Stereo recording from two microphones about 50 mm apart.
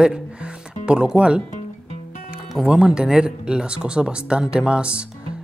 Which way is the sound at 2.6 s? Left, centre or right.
Centre.